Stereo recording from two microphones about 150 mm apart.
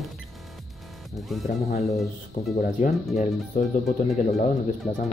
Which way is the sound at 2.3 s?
55° left (ahead or behind).